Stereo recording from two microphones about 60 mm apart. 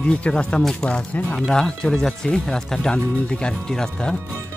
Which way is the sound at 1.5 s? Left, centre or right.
Centre.